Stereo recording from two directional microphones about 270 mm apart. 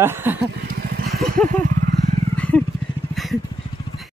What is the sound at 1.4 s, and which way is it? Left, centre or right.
Vehicle, right.